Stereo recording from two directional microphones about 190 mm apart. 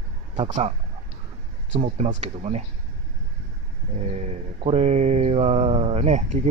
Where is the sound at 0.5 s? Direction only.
35° right (ahead or behind).